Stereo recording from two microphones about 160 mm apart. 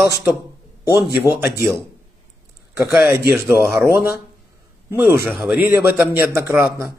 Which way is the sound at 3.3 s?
Centre (ahead or behind).